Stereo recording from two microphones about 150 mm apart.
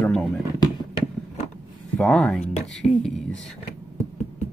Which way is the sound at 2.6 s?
5° left (ahead or behind).